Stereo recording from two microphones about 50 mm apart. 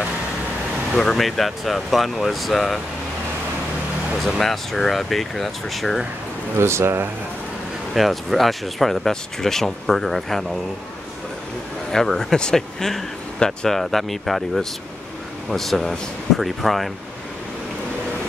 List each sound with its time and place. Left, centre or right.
0.9 s speech: centre
4.2 s speech: centre
6.6 s speech: right
7.9 s speech: centre
11.9 s speech: centre